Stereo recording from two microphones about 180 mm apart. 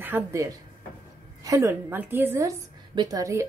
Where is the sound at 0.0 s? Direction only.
15° right (ahead or behind).